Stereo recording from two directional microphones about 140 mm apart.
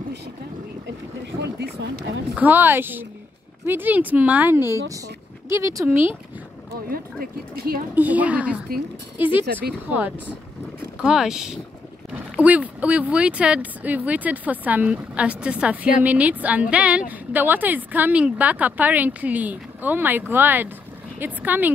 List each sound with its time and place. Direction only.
1.3 s a sound: 20° right (ahead or behind)
2.3 s speech: 15° right (ahead or behind)
6.9 s speech: 90° right
7.9 s speech: 10° right (ahead or behind)